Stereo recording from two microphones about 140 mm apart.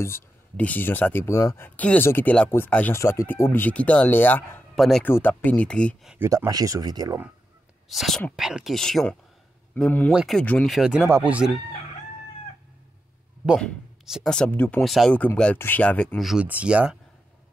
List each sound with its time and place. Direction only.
0.0 s speech: 15° left (ahead or behind)
4.7 s speech: centre (ahead or behind)
5.0 s speech: 15° left (ahead or behind)
6.2 s speech: 25° right (ahead or behind)
7.9 s speech: centre (ahead or behind)
10.1 s speech: centre (ahead or behind)
10.4 s speech: 10° left (ahead or behind)
10.7 s speech: 5° right (ahead or behind)
13.6 s speech: centre (ahead or behind)
14.8 s speech: centre (ahead or behind)
16.2 s speech: 5° right (ahead or behind)